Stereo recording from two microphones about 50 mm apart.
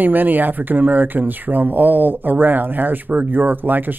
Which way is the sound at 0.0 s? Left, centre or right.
Right.